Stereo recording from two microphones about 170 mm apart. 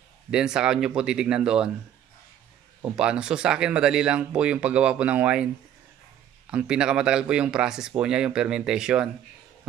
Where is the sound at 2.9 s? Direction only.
5° right (ahead or behind).